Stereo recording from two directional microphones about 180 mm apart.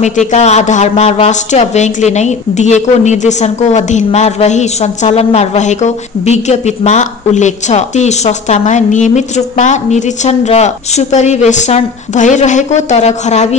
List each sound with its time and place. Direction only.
0.3 s a woman's voice: 40° left (ahead or behind)